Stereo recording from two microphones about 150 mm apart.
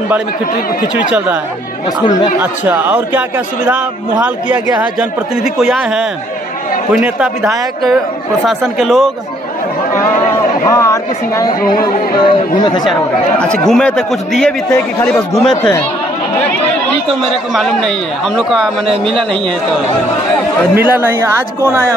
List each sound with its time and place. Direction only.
0.9 s a man's voice: 10° right (ahead or behind)
2.4 s a man's voice: 10° right (ahead or behind)
5.3 s a man's voice: 5° right (ahead or behind)
10.7 s a woman's voice: 20° left (ahead or behind)
12.2 s a woman's voice: 35° left (ahead or behind)
13.4 s a man's voice: 5° left (ahead or behind)
17.1 s a man's voice: centre (ahead or behind)
20.7 s a man's voice: 10° right (ahead or behind)